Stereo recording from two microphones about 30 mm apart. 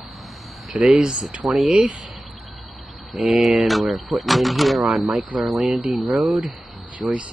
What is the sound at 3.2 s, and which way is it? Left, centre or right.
Speech, centre.